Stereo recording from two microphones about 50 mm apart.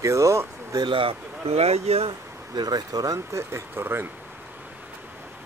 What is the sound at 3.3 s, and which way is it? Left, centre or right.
Speech, right.